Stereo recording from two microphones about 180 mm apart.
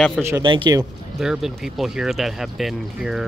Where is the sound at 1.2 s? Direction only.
5° right (ahead or behind).